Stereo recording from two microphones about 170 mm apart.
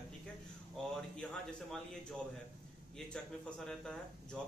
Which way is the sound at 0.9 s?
5° left (ahead or behind).